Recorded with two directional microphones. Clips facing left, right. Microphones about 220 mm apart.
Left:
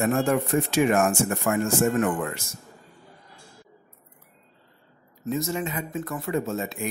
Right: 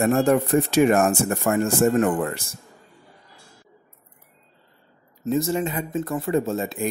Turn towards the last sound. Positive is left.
turn(degrees=-35)  # may be behind; listen again after turning